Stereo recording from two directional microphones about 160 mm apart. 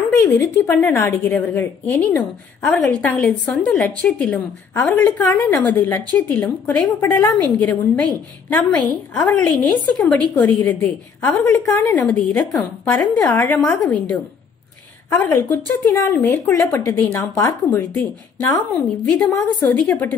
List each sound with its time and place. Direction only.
0.2 s a woman's voice: 15° left (ahead or behind)
15.0 s a woman's voice: 15° left (ahead or behind)